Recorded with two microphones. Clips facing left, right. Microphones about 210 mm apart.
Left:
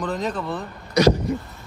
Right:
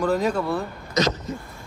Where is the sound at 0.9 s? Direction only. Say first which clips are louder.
Left 6 dB; 10° left (ahead or behind).